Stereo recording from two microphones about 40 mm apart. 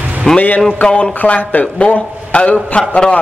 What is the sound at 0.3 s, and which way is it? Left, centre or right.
Speech, centre.